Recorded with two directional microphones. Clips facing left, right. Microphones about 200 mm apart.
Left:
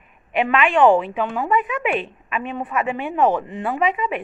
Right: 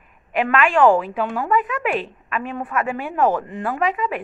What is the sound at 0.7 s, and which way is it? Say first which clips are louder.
Speech: left 1 dB; 25° left (ahead or behind).